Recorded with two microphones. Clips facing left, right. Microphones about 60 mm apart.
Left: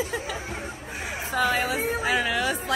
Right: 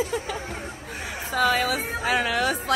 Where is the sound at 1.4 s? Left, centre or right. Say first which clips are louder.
Right 2 dB; right.